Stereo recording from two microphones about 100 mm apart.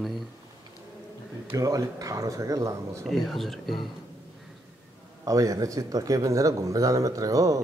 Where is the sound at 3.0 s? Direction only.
Centre (ahead or behind).